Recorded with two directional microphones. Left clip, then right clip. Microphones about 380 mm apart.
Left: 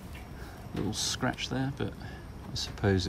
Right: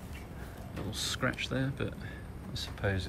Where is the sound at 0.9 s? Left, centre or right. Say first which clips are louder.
Left 1 dB; centre.